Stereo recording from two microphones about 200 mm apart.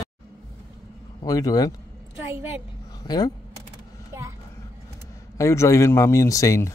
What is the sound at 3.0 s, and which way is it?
Speech, 20° left (ahead or behind).